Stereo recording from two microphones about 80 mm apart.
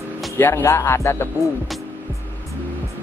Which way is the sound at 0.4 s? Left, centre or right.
Left.